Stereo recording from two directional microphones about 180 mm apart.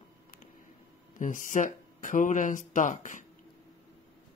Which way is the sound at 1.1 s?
45° left (ahead or behind).